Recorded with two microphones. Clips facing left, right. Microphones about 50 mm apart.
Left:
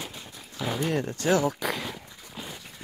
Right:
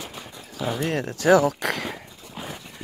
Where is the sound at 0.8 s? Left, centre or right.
Right.